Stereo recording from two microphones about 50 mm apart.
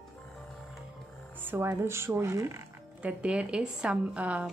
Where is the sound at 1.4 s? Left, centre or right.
Right.